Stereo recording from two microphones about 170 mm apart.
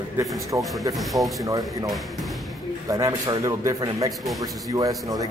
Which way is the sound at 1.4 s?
20° right (ahead or behind).